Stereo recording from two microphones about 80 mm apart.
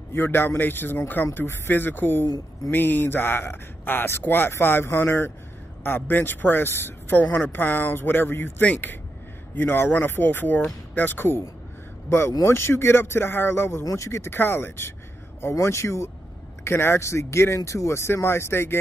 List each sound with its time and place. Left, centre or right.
0.1 s speech: left